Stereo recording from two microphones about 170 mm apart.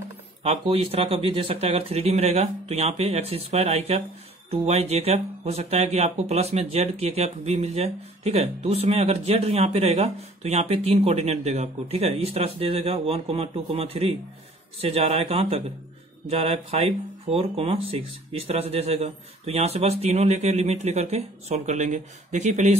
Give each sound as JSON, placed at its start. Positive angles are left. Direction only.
{"t": 0.4, "sound": "speech", "side_deg": -35}